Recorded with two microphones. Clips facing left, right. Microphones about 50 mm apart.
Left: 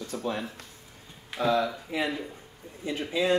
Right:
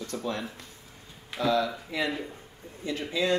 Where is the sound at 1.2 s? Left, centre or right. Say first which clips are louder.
Left 1 dB; centre.